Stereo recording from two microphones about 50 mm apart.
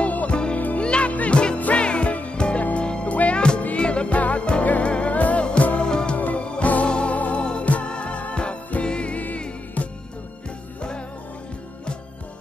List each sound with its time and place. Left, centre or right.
0.0 s music: left
0.8 s music: left
6.1 s music: left